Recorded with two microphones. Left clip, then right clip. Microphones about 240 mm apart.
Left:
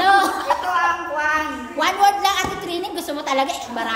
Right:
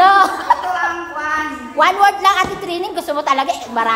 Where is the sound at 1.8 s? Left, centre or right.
Centre.